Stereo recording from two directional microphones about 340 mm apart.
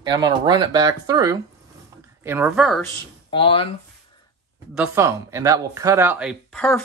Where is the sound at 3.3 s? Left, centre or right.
Centre.